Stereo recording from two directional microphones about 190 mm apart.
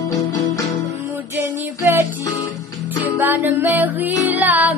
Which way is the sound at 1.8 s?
15° right (ahead or behind).